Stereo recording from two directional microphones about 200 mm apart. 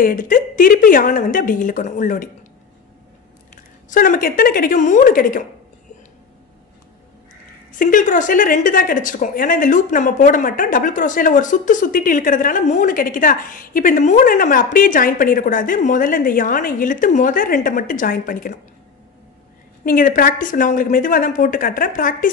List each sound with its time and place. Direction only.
0.0 s a woman's voice: 45° left (ahead or behind)
3.9 s a woman's voice: 45° left (ahead or behind)
7.7 s a woman's voice: 40° left (ahead or behind)
19.8 s a woman's voice: 45° left (ahead or behind)